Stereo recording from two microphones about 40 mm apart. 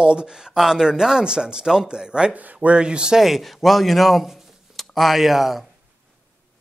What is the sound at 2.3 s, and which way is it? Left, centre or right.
Speech, right.